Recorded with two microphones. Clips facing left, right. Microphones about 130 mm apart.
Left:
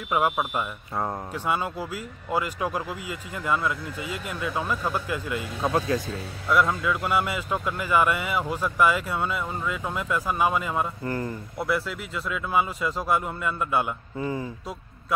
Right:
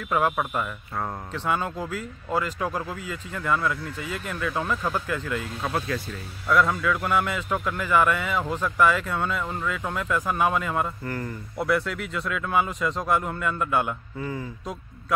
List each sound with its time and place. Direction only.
0.1 s speech: 10° left (ahead or behind)
5.6 s speech: 35° left (ahead or behind)
6.7 s speech: 10° left (ahead or behind)
14.2 s speech: 25° left (ahead or behind)